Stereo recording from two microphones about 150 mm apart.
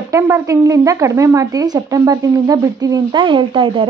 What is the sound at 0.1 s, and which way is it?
Speech, 20° right (ahead or behind).